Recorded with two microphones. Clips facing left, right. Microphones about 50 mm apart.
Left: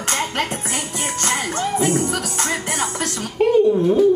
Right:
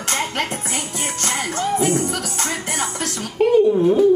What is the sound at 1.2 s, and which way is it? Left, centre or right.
Music, centre.